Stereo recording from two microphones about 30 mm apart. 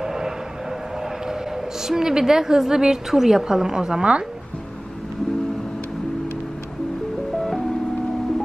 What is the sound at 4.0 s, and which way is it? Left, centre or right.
Speech, right.